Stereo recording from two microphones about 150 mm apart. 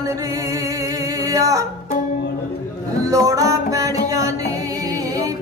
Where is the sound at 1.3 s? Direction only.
20° right (ahead or behind).